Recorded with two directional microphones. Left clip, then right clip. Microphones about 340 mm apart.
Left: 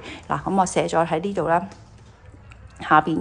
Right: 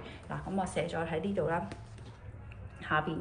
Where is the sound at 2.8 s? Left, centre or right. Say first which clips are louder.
Left 15 dB; centre.